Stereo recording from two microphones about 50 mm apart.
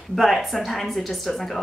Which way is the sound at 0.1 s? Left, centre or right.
Centre.